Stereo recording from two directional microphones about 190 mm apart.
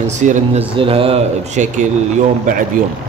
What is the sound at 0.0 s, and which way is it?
A man's voice, 40° right (ahead or behind).